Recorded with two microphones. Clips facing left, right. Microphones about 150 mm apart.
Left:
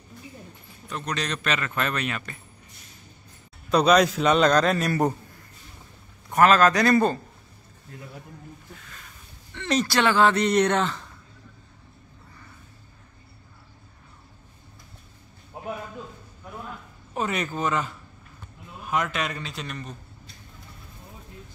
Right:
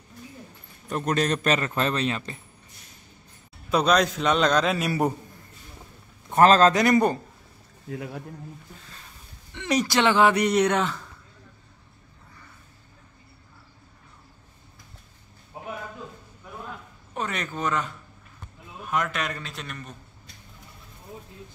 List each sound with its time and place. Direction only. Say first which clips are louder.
0.8 s a man's voice: right 6 dB; 45° right (ahead or behind); by 2.3 s 30° right (ahead or behind)
3.7 s a man's voice: left 3 dB; centre (ahead or behind)
6.3 s a man's voice: right 1 dB; 30° right (ahead or behind)
6.7 s speech: even; 20° right (ahead or behind)
7.9 s speech: right 9 dB; 90° right
9.5 s speech: even; 15° right (ahead or behind)
17.1 s a man's voice: left 3 dB; 5° left (ahead or behind)